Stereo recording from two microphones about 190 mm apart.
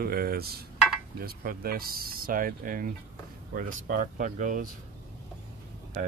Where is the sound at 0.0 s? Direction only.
50° right (ahead or behind).